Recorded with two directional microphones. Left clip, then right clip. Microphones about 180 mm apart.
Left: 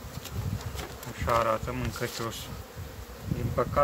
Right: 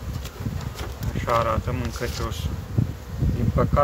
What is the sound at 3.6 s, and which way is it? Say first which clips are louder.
Speech: right 4 dB; 10° left (ahead or behind).